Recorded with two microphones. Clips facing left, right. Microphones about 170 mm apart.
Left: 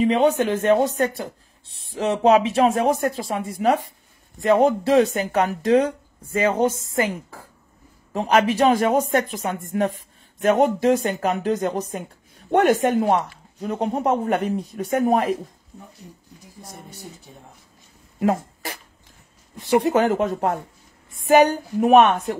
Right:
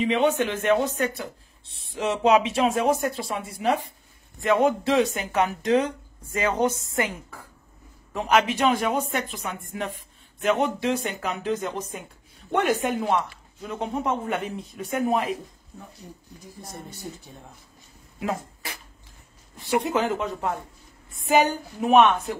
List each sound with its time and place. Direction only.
0.0 s speech: 35° left (ahead or behind)
18.2 s speech: 50° left (ahead or behind)